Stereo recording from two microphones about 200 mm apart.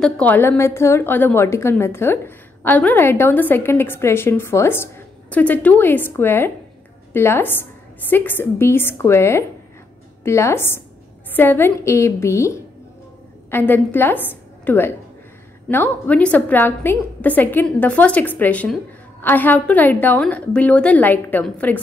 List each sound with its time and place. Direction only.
0.0 s a woman's voice: 10° left (ahead or behind)